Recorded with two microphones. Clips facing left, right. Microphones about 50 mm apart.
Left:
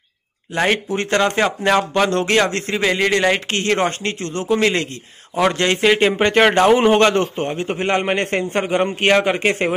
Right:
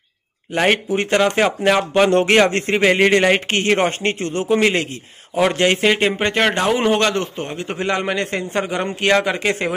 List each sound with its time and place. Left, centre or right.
0.7 s speech: centre
2.2 s speech: right; by 5.9 s centre
5.9 s a man's voice: centre
7.2 s a man's voice: left